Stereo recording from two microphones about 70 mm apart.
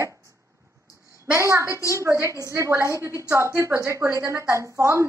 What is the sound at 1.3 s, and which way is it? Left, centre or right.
A woman's voice, right.